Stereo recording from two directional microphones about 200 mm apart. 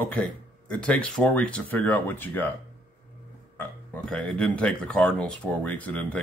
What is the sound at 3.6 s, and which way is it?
Speech, 5° left (ahead or behind).